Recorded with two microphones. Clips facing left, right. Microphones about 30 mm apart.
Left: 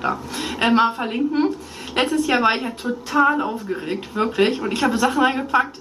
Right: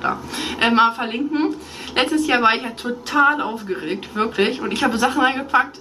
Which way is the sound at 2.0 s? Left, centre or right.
Right.